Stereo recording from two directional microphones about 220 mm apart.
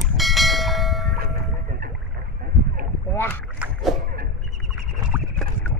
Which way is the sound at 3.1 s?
10° left (ahead or behind).